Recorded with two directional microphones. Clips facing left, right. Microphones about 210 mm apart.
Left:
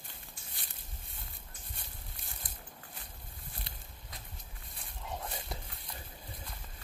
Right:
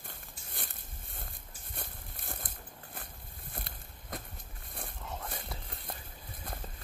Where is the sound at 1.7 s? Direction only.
55° right (ahead or behind).